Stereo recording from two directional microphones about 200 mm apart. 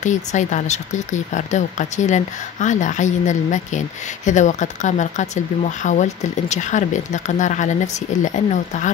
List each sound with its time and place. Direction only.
0.0 s speech: 35° left (ahead or behind)